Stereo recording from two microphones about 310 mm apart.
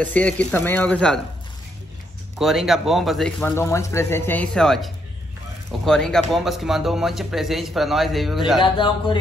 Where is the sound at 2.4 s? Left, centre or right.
Centre.